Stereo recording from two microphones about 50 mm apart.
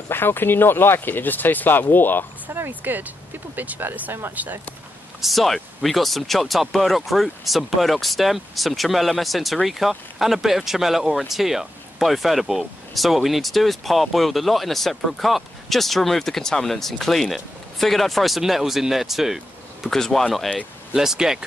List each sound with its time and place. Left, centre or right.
0.1 s speech: left
2.7 s speech: right
5.2 s speech: centre
19.9 s speech: centre
20.9 s speech: centre